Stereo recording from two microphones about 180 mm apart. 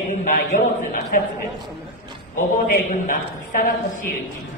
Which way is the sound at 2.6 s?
50° left (ahead or behind).